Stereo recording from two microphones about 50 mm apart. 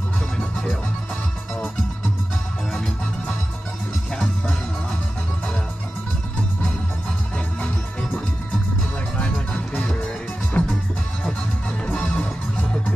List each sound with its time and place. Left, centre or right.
7.3 s music: left
9.2 s music: left
11.9 s music: left